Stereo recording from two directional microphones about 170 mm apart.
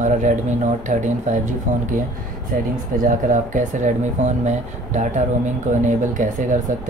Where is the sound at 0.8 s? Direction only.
45° right (ahead or behind).